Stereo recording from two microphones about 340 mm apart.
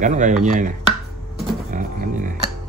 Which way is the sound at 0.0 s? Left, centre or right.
Right.